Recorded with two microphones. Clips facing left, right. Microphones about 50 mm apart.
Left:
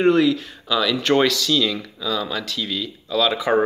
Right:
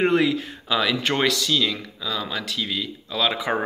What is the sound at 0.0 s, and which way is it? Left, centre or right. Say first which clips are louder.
Speech: left 3 dB; right.